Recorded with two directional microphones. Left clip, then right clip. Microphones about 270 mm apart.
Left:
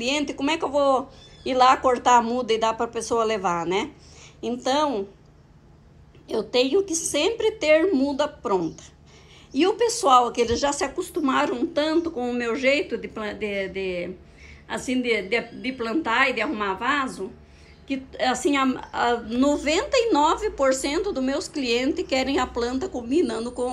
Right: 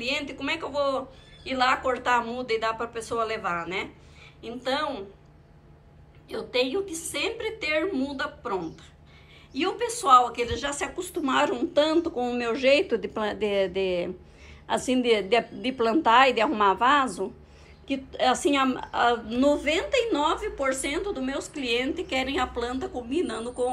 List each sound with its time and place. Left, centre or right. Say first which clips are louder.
0.3 s speech: left 6 dB; centre
6.2 s speech: left 4 dB; centre
10.0 s a woman's voice: even; centre